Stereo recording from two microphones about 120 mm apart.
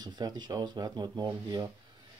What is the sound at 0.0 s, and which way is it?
Speech, 35° right (ahead or behind).